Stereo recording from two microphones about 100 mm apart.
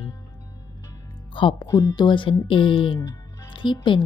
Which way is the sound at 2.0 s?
55° left (ahead or behind).